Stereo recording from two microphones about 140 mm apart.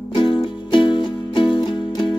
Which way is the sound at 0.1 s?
35° left (ahead or behind).